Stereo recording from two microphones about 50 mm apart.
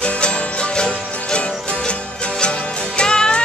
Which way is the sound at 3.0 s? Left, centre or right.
Centre.